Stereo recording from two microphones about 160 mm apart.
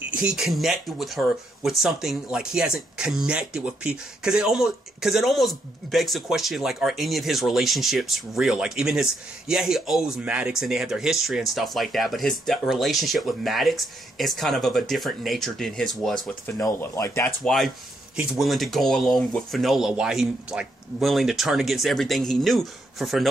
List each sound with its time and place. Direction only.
0.2 s speech: 5° right (ahead or behind)
16.5 s speech: 20° left (ahead or behind)
17.4 s speech: centre (ahead or behind)